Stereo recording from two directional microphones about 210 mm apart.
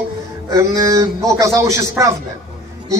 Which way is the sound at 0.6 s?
15° right (ahead or behind).